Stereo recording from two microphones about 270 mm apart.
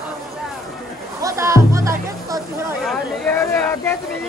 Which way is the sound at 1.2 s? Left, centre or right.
Centre.